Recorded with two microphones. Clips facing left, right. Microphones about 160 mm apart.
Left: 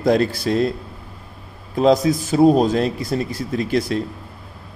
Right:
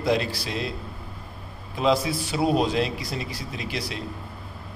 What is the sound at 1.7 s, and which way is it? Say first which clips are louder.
A man's voice: left 7 dB; 40° left (ahead or behind).